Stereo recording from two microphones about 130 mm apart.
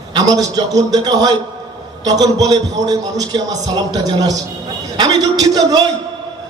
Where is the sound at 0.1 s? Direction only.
30° right (ahead or behind).